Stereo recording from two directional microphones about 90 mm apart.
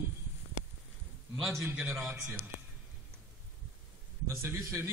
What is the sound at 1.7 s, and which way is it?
Speech, 15° right (ahead or behind).